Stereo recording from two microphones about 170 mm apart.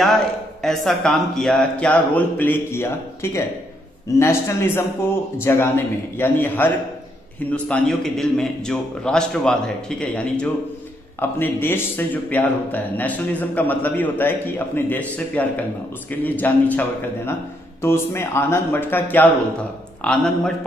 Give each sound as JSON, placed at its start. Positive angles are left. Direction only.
{"t": 0.6, "sound": "a man's voice", "side_deg": 0}
{"t": 17.8, "sound": "a man's voice", "side_deg": 15}